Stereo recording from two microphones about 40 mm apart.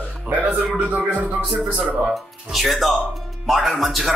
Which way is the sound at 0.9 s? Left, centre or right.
Right.